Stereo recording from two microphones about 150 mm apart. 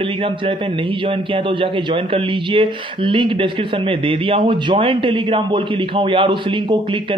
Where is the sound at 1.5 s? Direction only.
35° right (ahead or behind).